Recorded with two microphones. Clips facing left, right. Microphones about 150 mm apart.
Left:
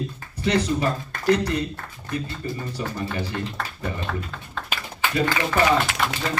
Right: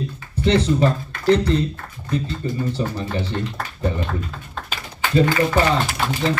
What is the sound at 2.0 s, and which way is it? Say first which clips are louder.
Speech: right 5 dB; 25° right (ahead or behind).